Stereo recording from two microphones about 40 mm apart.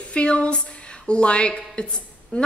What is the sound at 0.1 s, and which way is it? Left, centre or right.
Speech, left.